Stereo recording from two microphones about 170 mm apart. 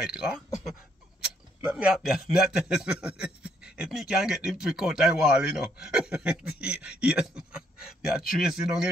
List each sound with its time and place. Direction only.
0.0 s speech: 5° right (ahead or behind)
1.7 s speech: 5° right (ahead or behind)